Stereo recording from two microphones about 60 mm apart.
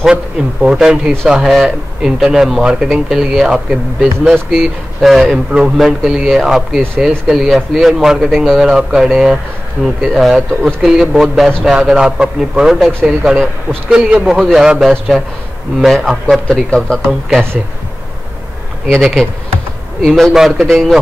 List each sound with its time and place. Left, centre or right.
0.0 s speech: centre
9.8 s speech: centre
10.1 s speech: centre
13.8 s a man's voice: centre
14.5 s speech: centre
16.4 s speech: centre
18.9 s speech: centre
20.3 s speech: centre